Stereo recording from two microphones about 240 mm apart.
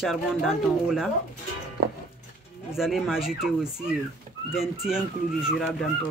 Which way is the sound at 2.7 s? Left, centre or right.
Centre.